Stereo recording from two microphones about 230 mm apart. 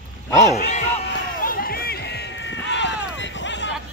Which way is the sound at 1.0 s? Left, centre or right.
Left.